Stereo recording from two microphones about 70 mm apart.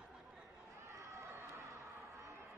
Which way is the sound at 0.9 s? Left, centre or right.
Right.